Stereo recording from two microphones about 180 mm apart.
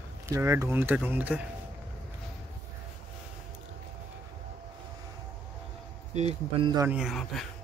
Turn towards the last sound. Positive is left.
turn(degrees=0)  # may be behind; listen again after turning